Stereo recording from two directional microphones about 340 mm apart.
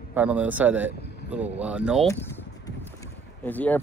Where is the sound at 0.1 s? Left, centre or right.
Centre.